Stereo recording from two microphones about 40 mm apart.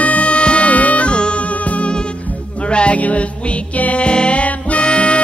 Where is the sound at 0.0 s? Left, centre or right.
Left.